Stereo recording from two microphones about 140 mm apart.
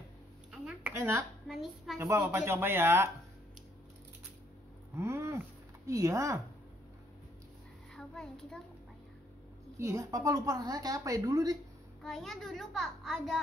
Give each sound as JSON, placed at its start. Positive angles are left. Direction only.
{"t": 0.5, "sound": "a sound", "side_deg": -5}
{"t": 0.9, "sound": "a woman's voice", "side_deg": -20}
{"t": 1.5, "sound": "a child's voice", "side_deg": 0}
{"t": 2.0, "sound": "speech", "side_deg": -20}
{"t": 4.9, "sound": "a sound", "side_deg": -20}
{"t": 5.9, "sound": "a woman's voice", "side_deg": -20}
{"t": 7.9, "sound": "a child's voice", "side_deg": 5}
{"t": 9.8, "sound": "a woman's voice", "side_deg": -20}
{"t": 12.0, "sound": "a child's voice", "side_deg": 0}